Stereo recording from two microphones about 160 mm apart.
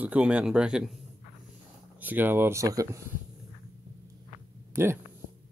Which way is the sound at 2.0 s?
10° right (ahead or behind).